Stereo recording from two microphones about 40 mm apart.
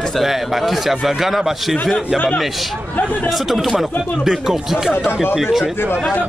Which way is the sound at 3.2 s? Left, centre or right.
Centre.